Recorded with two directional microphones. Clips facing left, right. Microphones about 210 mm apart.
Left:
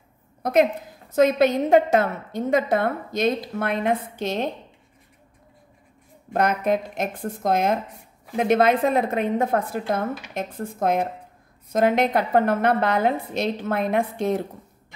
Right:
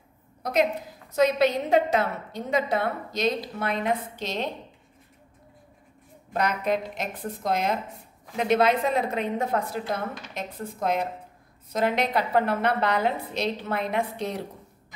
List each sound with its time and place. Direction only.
0.4 s a woman's voice: 55° left (ahead or behind)
6.3 s a woman's voice: 50° left (ahead or behind)